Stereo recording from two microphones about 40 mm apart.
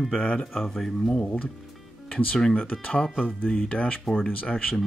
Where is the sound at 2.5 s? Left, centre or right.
Left.